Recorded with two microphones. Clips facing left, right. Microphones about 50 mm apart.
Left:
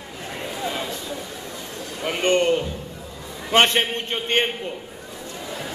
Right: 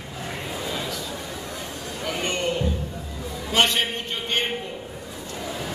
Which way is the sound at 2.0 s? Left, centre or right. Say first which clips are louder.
Left 7 dB; left.